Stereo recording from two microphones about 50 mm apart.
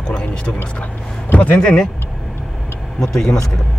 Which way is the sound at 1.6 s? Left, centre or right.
Centre.